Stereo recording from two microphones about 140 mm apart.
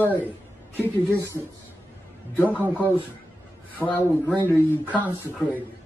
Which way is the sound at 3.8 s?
10° left (ahead or behind).